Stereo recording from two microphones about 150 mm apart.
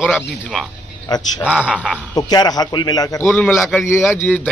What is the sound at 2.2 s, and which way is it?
A man's voice, 25° left (ahead or behind).